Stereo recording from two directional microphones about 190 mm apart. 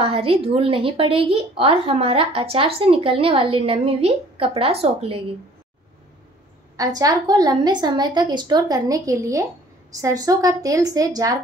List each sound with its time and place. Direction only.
0.0 s a woman's voice: 30° right (ahead or behind)
6.8 s a woman's voice: 20° right (ahead or behind)